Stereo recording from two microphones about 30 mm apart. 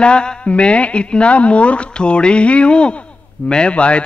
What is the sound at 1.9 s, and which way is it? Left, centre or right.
Speech, left.